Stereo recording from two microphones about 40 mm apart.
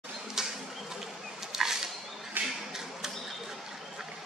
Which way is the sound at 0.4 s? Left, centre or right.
Centre.